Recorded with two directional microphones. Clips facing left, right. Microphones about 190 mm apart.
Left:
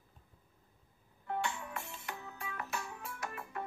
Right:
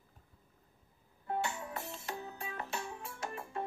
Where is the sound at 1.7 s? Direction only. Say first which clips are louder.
Right 2 dB; 35° right (ahead or behind).